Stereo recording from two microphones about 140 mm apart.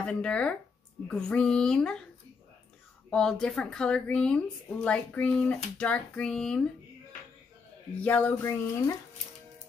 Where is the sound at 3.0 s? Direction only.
5° left (ahead or behind).